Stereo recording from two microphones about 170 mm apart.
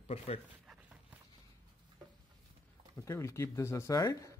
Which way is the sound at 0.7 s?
5° right (ahead or behind).